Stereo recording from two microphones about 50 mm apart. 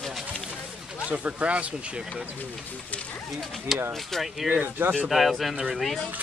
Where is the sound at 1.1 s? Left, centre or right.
Right.